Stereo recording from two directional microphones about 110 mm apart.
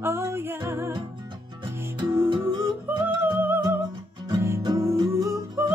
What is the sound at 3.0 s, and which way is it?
Music, 20° right (ahead or behind).